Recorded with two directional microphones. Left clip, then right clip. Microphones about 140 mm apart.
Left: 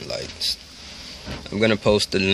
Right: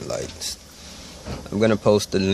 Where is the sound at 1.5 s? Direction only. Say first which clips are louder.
Right 1 dB; 5° right (ahead or behind).